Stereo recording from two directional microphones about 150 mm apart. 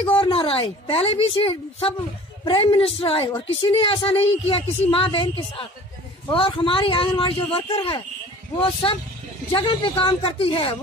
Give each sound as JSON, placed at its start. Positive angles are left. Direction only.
{"t": 0.0, "sound": "a woman's voice", "side_deg": 35}
{"t": 9.5, "sound": "a woman's voice", "side_deg": 35}